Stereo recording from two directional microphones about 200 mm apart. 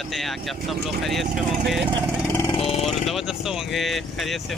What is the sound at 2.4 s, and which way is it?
Vehicle, 25° left (ahead or behind).